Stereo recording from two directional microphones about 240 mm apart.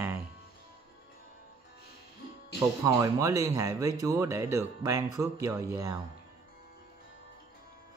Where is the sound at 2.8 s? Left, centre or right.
Centre.